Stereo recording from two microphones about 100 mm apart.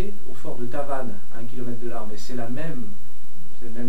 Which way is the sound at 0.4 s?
10° right (ahead or behind).